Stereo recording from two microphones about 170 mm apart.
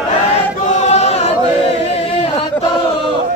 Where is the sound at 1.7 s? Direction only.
35° left (ahead or behind).